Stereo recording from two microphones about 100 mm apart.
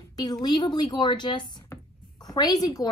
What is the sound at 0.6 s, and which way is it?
A woman's voice, 50° left (ahead or behind).